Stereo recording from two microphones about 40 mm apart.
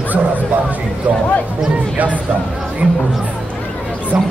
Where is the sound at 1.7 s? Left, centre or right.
Right.